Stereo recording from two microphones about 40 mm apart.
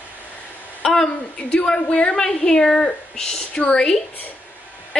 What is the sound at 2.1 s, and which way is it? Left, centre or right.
A woman's voice, centre.